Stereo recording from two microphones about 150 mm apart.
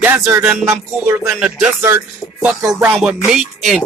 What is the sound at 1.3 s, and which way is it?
Music, 5° right (ahead or behind).